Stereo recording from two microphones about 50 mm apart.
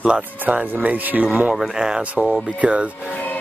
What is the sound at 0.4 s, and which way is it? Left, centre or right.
Speech, right.